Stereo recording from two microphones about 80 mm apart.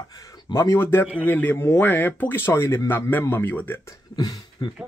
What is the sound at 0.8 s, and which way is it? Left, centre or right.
Speech, left.